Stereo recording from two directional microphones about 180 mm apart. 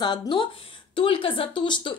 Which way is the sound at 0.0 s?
25° left (ahead or behind).